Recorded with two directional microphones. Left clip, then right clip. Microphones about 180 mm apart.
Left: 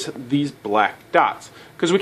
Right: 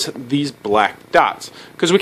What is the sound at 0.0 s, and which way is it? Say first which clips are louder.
Speech: right 3 dB; 20° right (ahead or behind).